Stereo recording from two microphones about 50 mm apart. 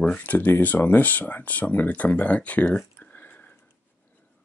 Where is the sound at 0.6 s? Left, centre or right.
Left.